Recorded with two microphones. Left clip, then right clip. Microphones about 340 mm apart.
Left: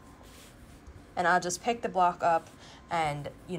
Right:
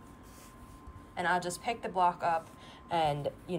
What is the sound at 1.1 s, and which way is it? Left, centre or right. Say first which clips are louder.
Speech: left 5 dB; centre.